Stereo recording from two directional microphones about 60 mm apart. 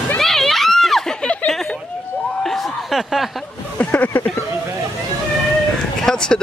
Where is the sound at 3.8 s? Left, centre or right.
Left.